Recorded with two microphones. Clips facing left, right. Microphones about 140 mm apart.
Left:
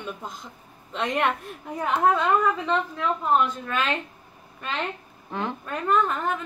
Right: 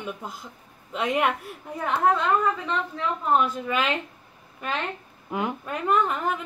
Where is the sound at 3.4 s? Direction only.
5° right (ahead or behind).